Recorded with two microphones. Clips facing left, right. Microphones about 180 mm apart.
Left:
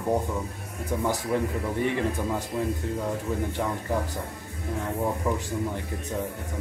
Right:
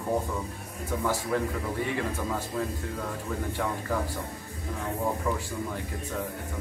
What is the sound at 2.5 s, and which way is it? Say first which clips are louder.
Speech: left 2 dB; 20° left (ahead or behind).